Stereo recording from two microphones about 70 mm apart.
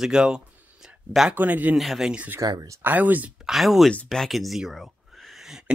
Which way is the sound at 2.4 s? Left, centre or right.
Right.